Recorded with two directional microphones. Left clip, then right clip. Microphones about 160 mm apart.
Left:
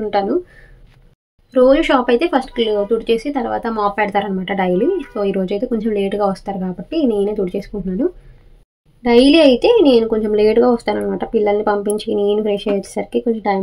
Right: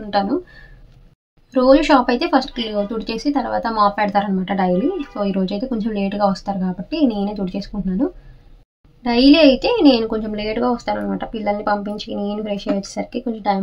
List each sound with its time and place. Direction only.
1.5 s speech: 15° left (ahead or behind)
9.0 s speech: 20° left (ahead or behind)